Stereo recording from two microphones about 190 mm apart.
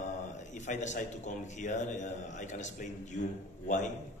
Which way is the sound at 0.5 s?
40° left (ahead or behind).